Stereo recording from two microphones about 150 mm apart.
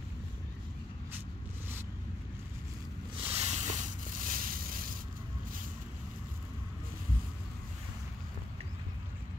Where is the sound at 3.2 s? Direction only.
50° right (ahead or behind); by 4.9 s 70° right (ahead or behind).